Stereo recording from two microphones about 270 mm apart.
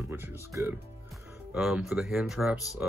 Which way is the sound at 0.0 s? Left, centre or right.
Centre.